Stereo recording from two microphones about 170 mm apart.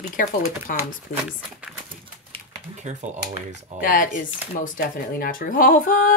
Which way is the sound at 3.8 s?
55° left (ahead or behind).